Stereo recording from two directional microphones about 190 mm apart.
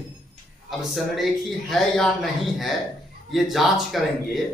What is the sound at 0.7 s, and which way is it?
Speech, centre (ahead or behind).